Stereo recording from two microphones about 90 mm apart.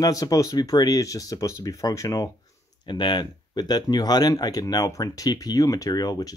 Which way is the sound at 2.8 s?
60° left (ahead or behind).